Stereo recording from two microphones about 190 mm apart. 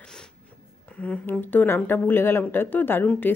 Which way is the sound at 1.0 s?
10° left (ahead or behind).